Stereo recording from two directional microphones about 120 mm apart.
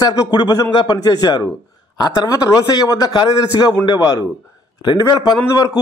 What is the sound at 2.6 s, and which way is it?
A man's voice, 30° left (ahead or behind).